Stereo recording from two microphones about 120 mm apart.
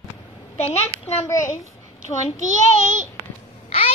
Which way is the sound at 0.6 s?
65° left (ahead or behind).